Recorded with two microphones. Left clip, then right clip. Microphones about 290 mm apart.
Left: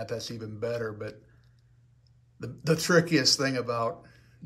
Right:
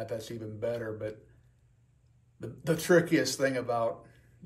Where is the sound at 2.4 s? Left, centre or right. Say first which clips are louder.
Left 2 dB; centre.